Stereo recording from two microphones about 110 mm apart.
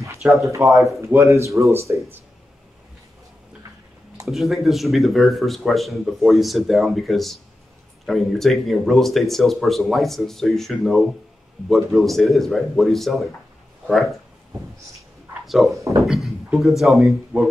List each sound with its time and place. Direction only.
0.4 s speech: 30° right (ahead or behind)
4.3 s speech: centre (ahead or behind)
15.4 s speech: centre (ahead or behind)
17.3 s speech: 15° right (ahead or behind)